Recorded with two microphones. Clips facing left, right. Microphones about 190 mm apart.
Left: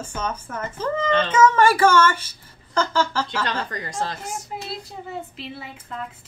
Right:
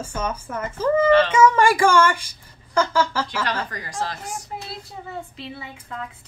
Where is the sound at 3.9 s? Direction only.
25° left (ahead or behind).